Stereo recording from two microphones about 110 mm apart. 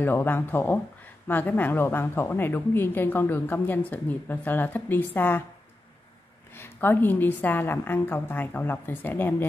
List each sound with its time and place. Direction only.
0.0 s a woman's voice: 20° left (ahead or behind)
6.5 s a woman's voice: 20° left (ahead or behind)